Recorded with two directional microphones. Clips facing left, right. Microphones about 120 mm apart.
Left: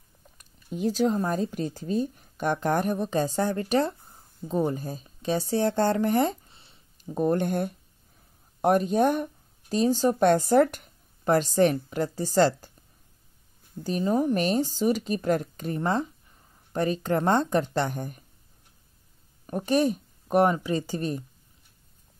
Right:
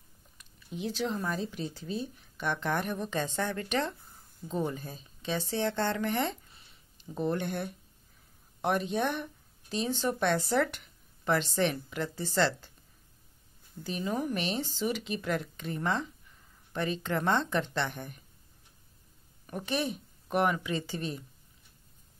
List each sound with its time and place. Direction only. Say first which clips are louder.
0.4 s speech: left 8 dB; 45° left (ahead or behind)
7.0 s speech: left 7 dB; 45° left (ahead or behind)
13.8 s speech: left 8 dB; 40° left (ahead or behind)
19.4 s speech: left 9 dB; 40° left (ahead or behind)